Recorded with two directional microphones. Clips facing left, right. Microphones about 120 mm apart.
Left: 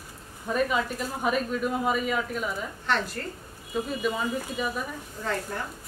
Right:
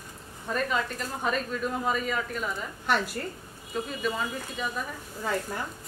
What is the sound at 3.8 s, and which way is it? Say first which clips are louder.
Speech: left 2 dB; 5° left (ahead or behind).